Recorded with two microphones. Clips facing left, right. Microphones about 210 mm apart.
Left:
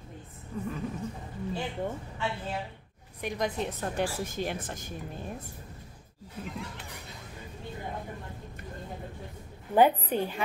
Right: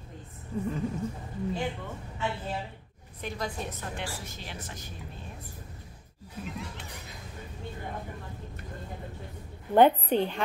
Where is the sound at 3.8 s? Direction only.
45° left (ahead or behind).